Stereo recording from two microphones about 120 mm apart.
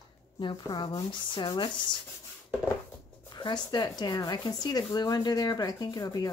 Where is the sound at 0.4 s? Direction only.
40° left (ahead or behind).